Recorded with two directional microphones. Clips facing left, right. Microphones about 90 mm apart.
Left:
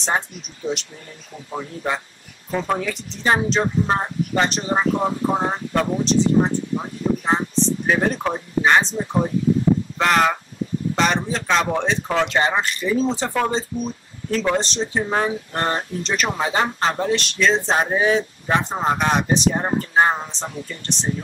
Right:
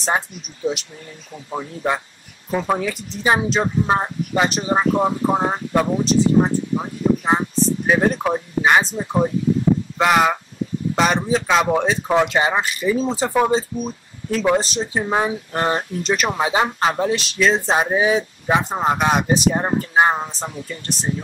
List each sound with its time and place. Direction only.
1.5 s speech: 10° right (ahead or behind)
13.3 s speech: 15° right (ahead or behind)